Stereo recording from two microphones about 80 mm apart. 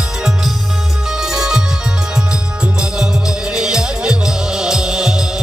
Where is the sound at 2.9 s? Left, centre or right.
Centre.